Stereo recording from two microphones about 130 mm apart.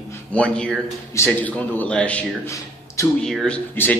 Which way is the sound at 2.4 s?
25° left (ahead or behind).